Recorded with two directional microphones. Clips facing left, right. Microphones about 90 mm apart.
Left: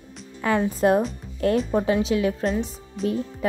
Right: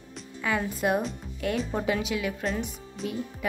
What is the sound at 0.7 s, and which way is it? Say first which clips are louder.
Speech: left 7 dB; 35° left (ahead or behind).